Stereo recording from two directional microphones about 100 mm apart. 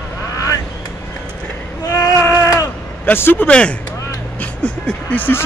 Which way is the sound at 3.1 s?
20° left (ahead or behind).